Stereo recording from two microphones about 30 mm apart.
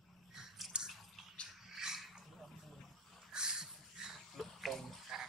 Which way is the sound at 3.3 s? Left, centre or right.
Right.